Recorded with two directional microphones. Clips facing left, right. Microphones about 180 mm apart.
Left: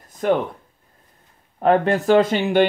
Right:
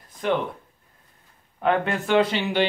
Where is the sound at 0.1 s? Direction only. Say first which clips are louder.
Left 5 dB; 45° left (ahead or behind).